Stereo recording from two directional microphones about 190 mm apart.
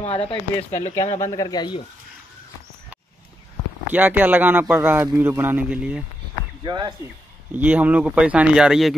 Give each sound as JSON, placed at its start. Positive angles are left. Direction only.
{"t": 0.0, "sound": "speech", "side_deg": 30}
{"t": 1.3, "sound": "speech", "side_deg": 20}
{"t": 3.9, "sound": "speech", "side_deg": -10}
{"t": 6.6, "sound": "speech", "side_deg": -25}
{"t": 7.5, "sound": "speech", "side_deg": -10}